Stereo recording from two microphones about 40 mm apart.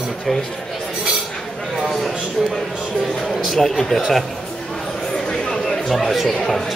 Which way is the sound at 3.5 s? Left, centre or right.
Centre.